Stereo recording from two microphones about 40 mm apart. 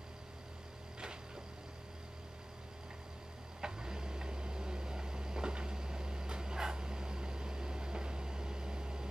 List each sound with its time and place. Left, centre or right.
3.6 s vehicle: centre